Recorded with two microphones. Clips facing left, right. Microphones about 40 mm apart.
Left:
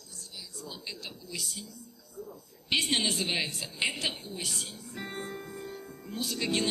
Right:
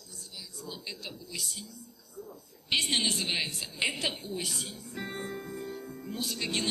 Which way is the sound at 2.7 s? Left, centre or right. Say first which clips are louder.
Even; left.